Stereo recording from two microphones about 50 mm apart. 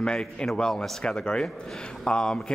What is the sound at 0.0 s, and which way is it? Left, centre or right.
A man's voice, centre.